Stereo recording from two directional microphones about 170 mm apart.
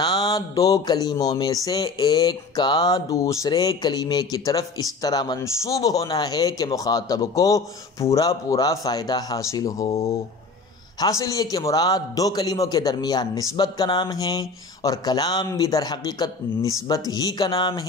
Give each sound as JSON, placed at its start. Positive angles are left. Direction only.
{"t": 0.0, "sound": "speech", "side_deg": 25}